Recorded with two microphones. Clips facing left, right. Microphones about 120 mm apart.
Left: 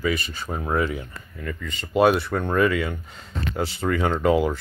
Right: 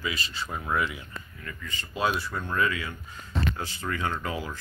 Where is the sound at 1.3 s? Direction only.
65° left (ahead or behind).